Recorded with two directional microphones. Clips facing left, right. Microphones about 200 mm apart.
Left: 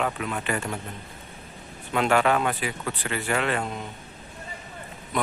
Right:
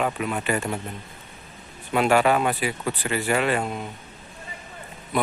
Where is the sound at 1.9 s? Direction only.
10° right (ahead or behind).